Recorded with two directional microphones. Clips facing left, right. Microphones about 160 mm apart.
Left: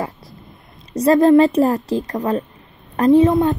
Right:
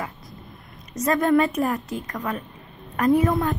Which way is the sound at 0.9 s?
30° left (ahead or behind).